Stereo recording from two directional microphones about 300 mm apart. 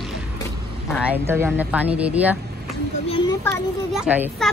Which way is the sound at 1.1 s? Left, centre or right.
Centre.